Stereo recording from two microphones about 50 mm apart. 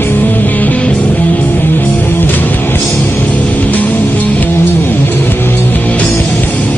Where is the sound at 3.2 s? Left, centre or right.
Left.